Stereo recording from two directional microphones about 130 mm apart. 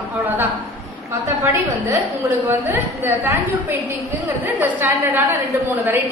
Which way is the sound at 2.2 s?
20° right (ahead or behind).